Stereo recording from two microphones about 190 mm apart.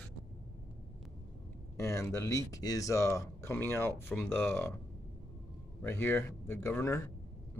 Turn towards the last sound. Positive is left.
turn(degrees=10)  # may be behind; listen again after turning